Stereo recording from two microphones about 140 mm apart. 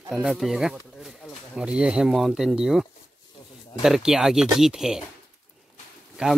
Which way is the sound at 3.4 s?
25° left (ahead or behind).